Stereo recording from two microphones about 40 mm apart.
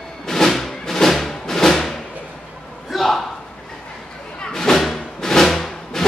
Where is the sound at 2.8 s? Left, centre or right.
Centre.